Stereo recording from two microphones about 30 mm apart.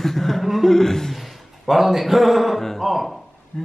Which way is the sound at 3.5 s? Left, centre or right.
Centre.